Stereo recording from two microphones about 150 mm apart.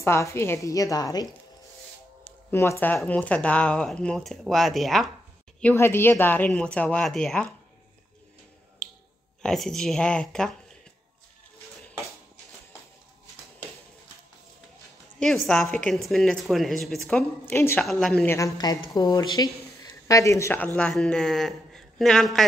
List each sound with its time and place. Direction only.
0.0 s a woman's voice: 20° left (ahead or behind)
2.5 s a woman's voice: 20° left (ahead or behind); by 5.1 s centre (ahead or behind)
5.6 s a woman's voice: 15° left (ahead or behind)
9.4 s speech: 5° left (ahead or behind)
15.1 s speech: centre (ahead or behind)
17.5 s a woman's voice: 15° left (ahead or behind)
17.8 s speech: 5° left (ahead or behind)
18.3 s a woman's voice: 25° left (ahead or behind); by 22.5 s centre (ahead or behind)